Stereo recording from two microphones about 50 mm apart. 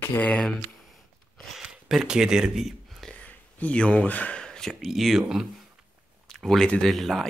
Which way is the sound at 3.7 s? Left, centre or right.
Left.